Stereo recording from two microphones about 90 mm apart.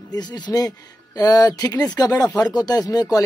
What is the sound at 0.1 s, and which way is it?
Speech, 50° left (ahead or behind).